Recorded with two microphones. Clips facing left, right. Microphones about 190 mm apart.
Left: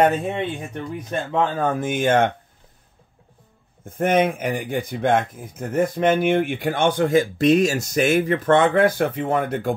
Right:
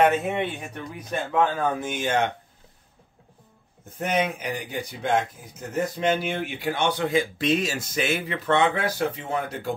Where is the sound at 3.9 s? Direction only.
50° left (ahead or behind).